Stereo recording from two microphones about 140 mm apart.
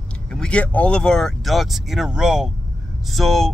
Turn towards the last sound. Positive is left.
turn(degrees=0)  # may be behind; listen again after turning